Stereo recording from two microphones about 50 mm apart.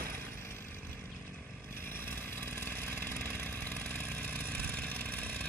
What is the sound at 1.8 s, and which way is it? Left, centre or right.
Vehicle, left.